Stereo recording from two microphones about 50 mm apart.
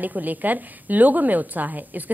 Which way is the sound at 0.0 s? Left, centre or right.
Right.